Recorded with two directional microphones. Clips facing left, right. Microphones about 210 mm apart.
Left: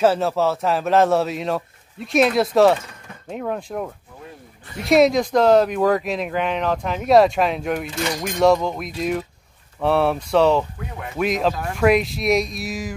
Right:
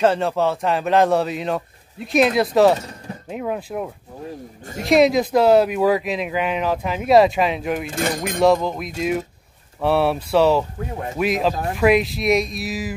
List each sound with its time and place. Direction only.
0.0 s speech: 5° left (ahead or behind)
2.8 s mechanisms: 35° right (ahead or behind)
3.3 s speech: 5° right (ahead or behind)
7.8 s speech: 50° right (ahead or behind)
8.4 s speech: centre (ahead or behind)
10.8 s speech: 40° right (ahead or behind)
11.1 s speech: 5° right (ahead or behind)